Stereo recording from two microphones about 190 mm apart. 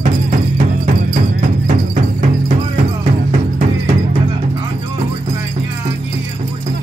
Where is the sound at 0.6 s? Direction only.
40° right (ahead or behind).